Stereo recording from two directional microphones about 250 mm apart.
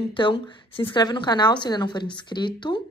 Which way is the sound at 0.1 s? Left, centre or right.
Centre.